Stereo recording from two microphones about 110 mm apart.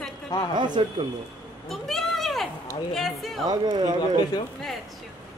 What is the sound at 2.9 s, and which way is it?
Speech, centre (ahead or behind).